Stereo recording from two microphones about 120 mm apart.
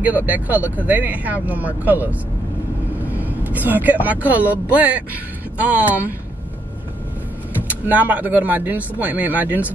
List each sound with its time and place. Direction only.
0.0 s speech: 15° right (ahead or behind)
7.9 s speech: 15° right (ahead or behind)